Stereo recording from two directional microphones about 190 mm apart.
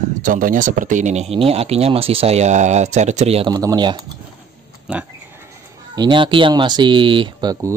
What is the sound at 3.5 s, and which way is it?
Speech, 20° right (ahead or behind).